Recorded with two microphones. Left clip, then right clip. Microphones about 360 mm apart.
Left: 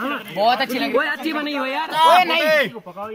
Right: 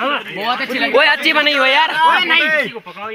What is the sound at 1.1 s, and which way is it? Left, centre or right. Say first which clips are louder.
Speech: right 11 dB; centre.